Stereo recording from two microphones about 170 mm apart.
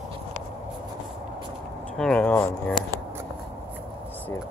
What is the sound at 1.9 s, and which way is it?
Speech, 5° left (ahead or behind).